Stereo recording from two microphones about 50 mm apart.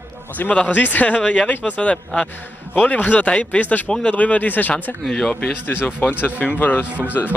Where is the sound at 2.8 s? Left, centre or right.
Left.